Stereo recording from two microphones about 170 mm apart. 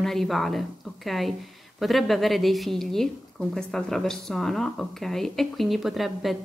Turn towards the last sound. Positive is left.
turn(degrees=0)  # may be behind; listen again after turning